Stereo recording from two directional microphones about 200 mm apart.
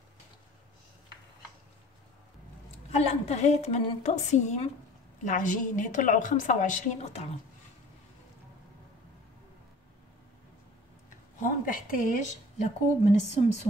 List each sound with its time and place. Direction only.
3.3 s speech: 35° left (ahead or behind)
11.3 s speech: 40° left (ahead or behind)